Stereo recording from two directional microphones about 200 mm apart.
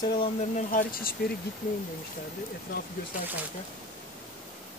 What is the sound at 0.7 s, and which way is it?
Speech, 45° left (ahead or behind).